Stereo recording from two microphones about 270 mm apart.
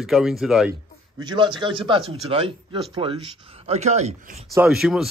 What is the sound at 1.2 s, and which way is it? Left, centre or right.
A man's voice, centre.